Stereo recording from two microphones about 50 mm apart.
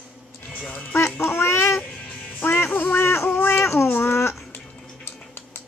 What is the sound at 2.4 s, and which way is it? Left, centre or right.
Music, left.